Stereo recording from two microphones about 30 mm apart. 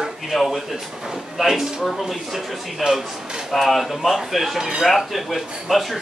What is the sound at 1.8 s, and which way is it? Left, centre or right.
Speech, centre.